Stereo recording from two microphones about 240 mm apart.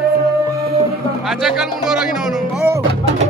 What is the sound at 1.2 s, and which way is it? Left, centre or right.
Speech, centre.